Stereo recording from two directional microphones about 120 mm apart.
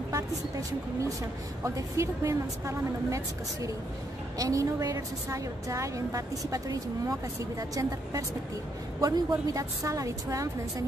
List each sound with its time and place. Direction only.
0.1 s a woman's voice: 30° right (ahead or behind)
4.4 s a woman's voice: 30° right (ahead or behind)
9.0 s a woman's voice: 30° right (ahead or behind)